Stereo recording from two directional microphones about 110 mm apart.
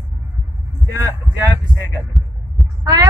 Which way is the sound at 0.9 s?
35° right (ahead or behind).